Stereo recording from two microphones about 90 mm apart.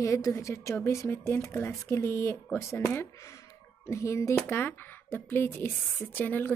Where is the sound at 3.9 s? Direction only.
35° left (ahead or behind).